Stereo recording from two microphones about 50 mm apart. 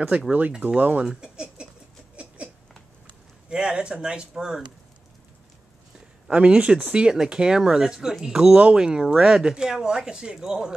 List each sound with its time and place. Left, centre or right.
0.1 s speech: right
0.5 s speech: centre
0.7 s speech: right
1.0 s a sound: centre
3.4 s speech: centre
6.2 s speech: right